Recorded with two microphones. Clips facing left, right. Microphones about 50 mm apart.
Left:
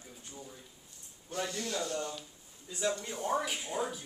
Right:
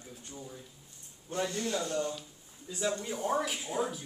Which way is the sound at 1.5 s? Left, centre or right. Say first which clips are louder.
Right 3 dB; right.